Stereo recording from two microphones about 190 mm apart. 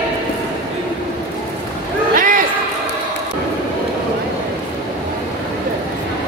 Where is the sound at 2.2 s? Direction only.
45° right (ahead or behind).